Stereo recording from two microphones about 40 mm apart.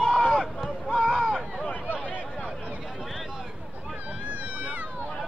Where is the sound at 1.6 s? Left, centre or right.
Left.